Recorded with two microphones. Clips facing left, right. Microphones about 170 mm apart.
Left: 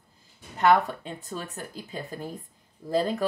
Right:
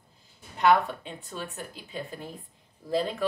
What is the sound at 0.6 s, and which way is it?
Speech, 40° left (ahead or behind).